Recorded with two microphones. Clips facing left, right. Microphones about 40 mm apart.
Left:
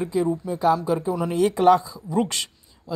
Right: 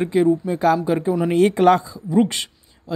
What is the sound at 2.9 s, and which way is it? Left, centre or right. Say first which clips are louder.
Speech: right 4 dB; right.